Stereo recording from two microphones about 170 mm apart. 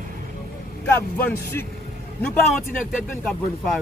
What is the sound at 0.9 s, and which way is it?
Speech, 10° left (ahead or behind).